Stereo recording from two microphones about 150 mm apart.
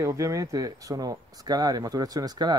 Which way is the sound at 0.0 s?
20° right (ahead or behind).